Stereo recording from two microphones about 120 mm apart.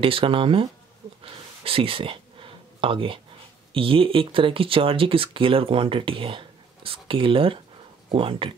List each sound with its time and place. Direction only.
0.0 s speech: 50° right (ahead or behind)
1.2 s a sound: 50° right (ahead or behind)
3.7 s speech: 50° right (ahead or behind)